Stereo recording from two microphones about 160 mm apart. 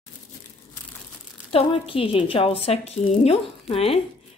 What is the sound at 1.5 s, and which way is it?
Speech, 35° left (ahead or behind).